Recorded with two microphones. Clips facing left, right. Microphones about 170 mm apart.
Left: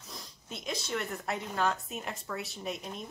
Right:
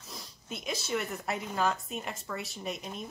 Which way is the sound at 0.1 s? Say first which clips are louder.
Right 2 dB; 5° right (ahead or behind).